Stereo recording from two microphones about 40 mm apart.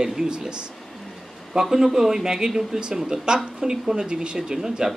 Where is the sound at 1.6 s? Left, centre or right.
Centre.